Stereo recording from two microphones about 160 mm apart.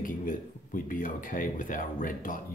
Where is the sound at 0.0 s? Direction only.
55° left (ahead or behind).